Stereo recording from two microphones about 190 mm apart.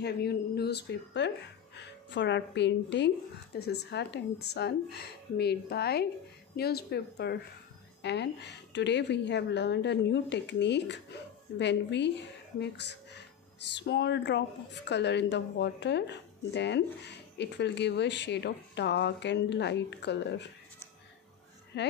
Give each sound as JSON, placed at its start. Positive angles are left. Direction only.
{"t": 0.0, "sound": "speech", "side_deg": 60}
{"t": 21.7, "sound": "speech", "side_deg": 65}